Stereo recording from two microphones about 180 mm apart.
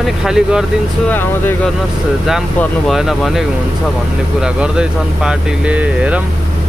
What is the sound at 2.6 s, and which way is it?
Speech, centre (ahead or behind).